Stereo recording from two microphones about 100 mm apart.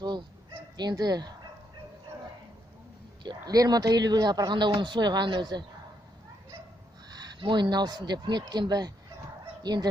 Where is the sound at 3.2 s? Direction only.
40° right (ahead or behind).